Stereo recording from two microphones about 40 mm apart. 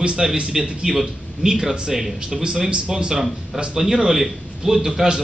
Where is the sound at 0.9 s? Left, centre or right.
Centre.